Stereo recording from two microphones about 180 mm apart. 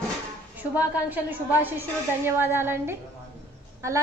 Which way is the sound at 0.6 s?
10° right (ahead or behind).